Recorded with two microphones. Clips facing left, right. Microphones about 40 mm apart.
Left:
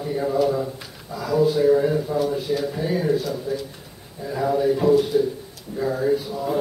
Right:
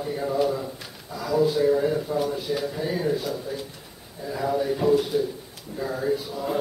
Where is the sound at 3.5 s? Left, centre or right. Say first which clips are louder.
Left 5 dB; centre.